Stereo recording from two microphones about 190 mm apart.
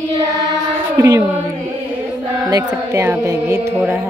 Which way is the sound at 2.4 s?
15° right (ahead or behind).